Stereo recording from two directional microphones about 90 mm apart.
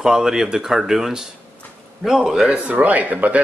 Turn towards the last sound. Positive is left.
turn(degrees=-15)  # may be behind; listen again after turning